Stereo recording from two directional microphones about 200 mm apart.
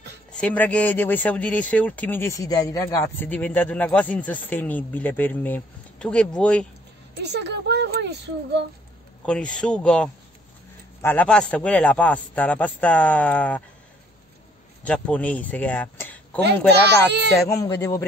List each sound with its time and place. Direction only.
0.3 s speech: 5° left (ahead or behind)
7.2 s speech: 55° right (ahead or behind)
9.2 s speech: 5° left (ahead or behind)
14.9 s speech: 5° left (ahead or behind)
16.7 s speech: 55° right (ahead or behind)
17.4 s speech: 15° left (ahead or behind)